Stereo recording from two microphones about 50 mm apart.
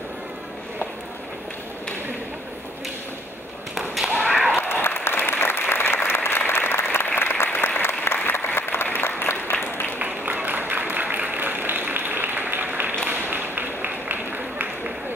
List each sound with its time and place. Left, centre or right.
3.7 s thump: centre
4.6 s applause: left
9.9 s a sound: right
13.0 s run: right